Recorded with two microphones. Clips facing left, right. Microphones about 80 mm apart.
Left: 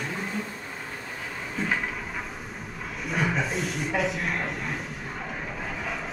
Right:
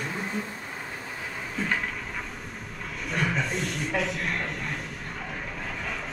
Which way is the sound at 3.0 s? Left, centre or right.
Centre.